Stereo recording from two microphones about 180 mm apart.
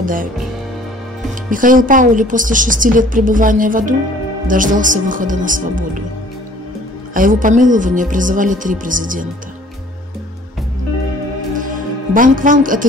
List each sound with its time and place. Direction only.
0.0 s a woman's voice: 50° right (ahead or behind)
1.5 s a woman's voice: 50° right (ahead or behind)
7.2 s a woman's voice: 45° right (ahead or behind)
11.6 s music: 50° right (ahead or behind)